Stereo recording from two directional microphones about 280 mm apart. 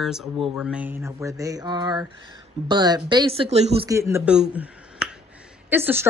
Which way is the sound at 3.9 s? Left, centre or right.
Centre.